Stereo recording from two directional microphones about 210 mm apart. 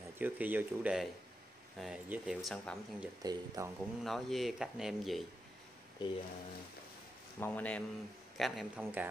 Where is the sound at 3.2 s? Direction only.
15° right (ahead or behind).